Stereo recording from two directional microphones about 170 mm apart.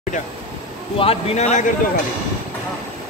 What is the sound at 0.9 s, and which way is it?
Speech, 35° left (ahead or behind).